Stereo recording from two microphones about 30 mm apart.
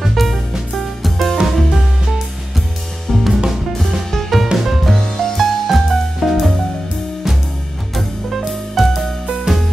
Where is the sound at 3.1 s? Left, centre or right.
Centre.